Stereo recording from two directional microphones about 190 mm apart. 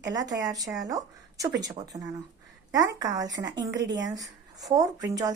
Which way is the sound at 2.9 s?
20° right (ahead or behind).